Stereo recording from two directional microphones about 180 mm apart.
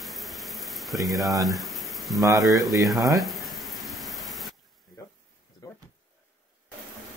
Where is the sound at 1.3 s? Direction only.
20° right (ahead or behind).